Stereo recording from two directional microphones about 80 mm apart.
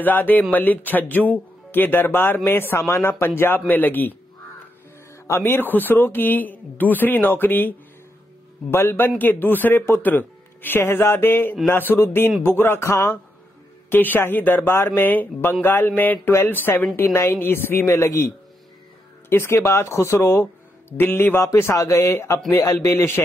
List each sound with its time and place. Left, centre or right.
0.0 s speech: left
5.1 s music: left
5.4 s a woman's voice: left